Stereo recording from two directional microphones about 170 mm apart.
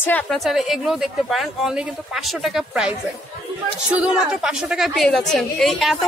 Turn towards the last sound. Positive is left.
turn(degrees=0)  # may be behind; listen again after turning